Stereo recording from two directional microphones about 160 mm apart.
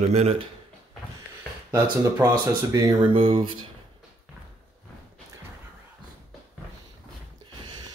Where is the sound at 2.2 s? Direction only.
20° right (ahead or behind).